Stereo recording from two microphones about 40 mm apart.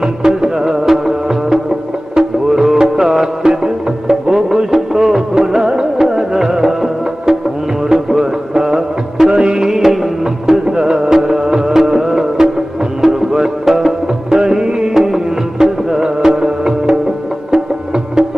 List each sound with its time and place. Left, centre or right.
0.0 s music: centre
2.2 s music: right
2.5 s music: centre
10.6 s music: centre